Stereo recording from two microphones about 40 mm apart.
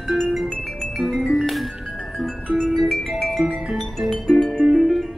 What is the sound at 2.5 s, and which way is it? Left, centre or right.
Music, centre.